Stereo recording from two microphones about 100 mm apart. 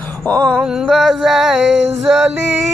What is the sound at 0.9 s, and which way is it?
Male singing, centre (ahead or behind).